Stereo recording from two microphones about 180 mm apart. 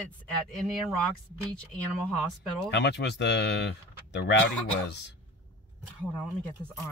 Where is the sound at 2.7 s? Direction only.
70° left (ahead or behind).